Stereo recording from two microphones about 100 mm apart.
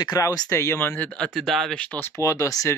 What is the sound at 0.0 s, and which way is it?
Speech, 40° left (ahead or behind).